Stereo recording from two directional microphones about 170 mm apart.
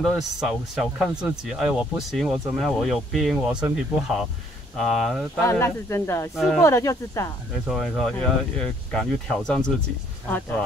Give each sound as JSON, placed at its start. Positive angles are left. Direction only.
{"t": 0.0, "sound": "speech", "side_deg": 0}
{"t": 5.4, "sound": "speech", "side_deg": 15}
{"t": 6.3, "sound": "speech", "side_deg": 0}
{"t": 6.6, "sound": "speech", "side_deg": 15}
{"t": 7.6, "sound": "speech", "side_deg": 0}